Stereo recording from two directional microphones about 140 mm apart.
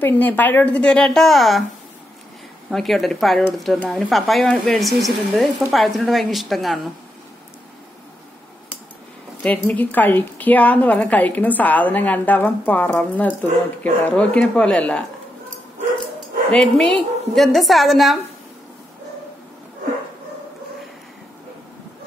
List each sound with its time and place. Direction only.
0.0 s a woman's voice: 15° left (ahead or behind)
2.7 s speech: centre (ahead or behind)
9.4 s a woman's voice: 10° left (ahead or behind)
16.5 s speech: 5° left (ahead or behind)